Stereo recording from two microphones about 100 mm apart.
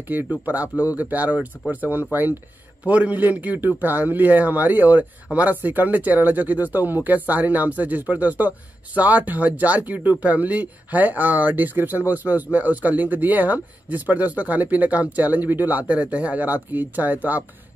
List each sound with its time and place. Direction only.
0.1 s speech: 15° right (ahead or behind)